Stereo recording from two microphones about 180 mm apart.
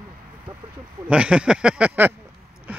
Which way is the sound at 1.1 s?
5° right (ahead or behind).